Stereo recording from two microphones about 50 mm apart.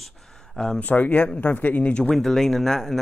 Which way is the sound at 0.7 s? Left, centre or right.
Left.